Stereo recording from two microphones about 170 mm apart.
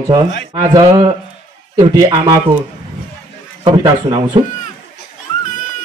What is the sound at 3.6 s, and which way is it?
Speech, 30° right (ahead or behind).